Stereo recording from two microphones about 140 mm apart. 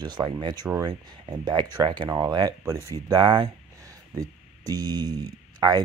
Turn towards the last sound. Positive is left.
turn(degrees=-30)  # may be behind; listen again after turning